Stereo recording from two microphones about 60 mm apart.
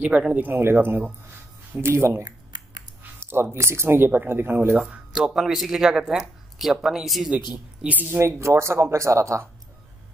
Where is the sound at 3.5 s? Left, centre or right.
Right.